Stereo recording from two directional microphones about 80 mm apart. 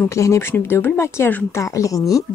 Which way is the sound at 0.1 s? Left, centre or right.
Left.